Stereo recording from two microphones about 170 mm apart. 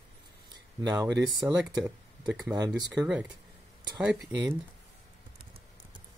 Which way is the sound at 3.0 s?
5° right (ahead or behind).